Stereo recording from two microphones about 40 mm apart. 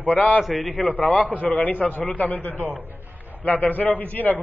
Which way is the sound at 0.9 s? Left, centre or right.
Left.